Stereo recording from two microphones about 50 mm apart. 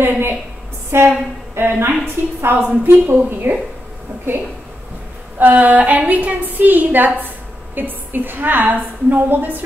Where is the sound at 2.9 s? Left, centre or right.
Right.